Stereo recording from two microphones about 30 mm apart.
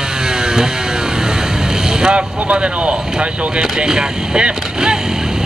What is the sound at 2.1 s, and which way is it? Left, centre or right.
Speech, right.